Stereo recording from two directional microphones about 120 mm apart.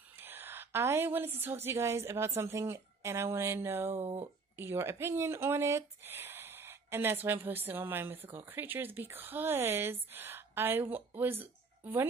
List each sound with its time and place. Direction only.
0.2 s a woman's voice: 15° right (ahead or behind)
3.9 s speech: 55° right (ahead or behind)
4.6 s speech: 20° right (ahead or behind)